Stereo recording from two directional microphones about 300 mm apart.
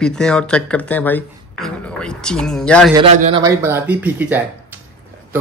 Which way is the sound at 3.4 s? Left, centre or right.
Centre.